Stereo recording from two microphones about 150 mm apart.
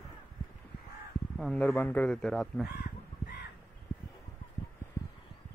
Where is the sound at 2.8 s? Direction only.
90° left.